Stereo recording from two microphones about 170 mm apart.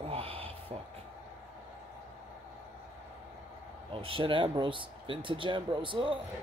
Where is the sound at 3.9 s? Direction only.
30° right (ahead or behind).